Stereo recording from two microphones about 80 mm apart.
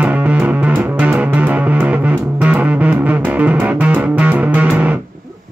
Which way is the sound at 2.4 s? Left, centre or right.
Centre.